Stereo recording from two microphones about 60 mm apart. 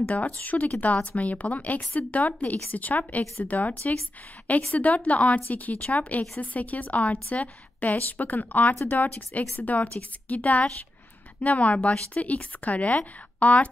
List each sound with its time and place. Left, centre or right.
0.0 s a woman's voice: left